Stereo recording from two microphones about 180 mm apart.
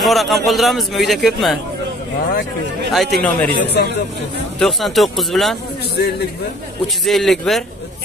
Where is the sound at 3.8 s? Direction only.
60° left (ahead or behind).